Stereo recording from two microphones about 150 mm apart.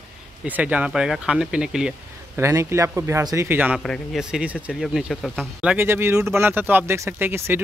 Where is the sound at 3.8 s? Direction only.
Centre (ahead or behind).